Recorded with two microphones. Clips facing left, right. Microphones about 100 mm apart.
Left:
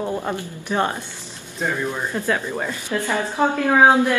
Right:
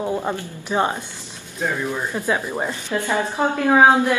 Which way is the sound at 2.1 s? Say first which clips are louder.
Even; 15° right (ahead or behind).